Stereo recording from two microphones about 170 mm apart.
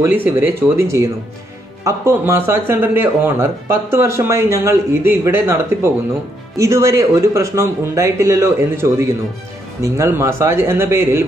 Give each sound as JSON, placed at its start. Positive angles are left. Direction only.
{"t": 0.0, "sound": "speech", "side_deg": -10}